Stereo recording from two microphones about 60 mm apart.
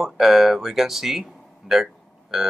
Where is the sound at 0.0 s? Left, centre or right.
Centre.